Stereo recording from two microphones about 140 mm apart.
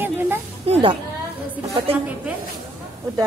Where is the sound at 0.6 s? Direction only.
40° right (ahead or behind).